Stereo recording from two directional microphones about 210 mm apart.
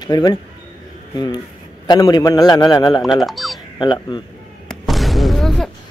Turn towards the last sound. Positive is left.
turn(degrees=0)  # may be behind; listen again after turning